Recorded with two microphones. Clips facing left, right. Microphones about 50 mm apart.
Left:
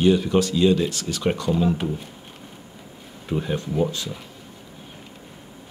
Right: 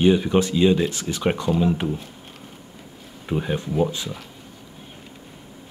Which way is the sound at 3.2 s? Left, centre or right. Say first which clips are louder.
Right 1 dB; centre.